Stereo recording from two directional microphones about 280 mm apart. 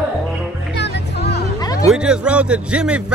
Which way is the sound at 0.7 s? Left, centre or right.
Left.